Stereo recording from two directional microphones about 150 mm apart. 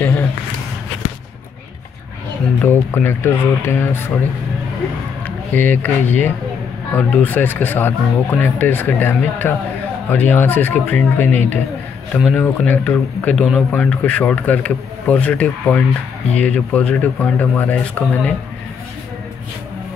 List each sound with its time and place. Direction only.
2.6 s speech: 15° left (ahead or behind)
5.2 s speech: 10° left (ahead or behind)